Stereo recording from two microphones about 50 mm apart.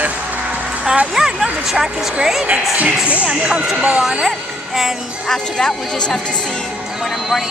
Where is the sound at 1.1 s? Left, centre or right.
Centre.